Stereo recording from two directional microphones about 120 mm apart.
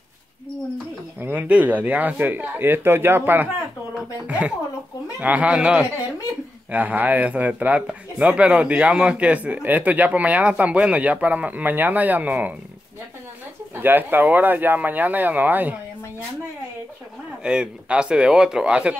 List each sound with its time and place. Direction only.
1.2 s speech: 15° right (ahead or behind)
13.7 s speech: 15° right (ahead or behind)
17.4 s speech: 10° right (ahead or behind)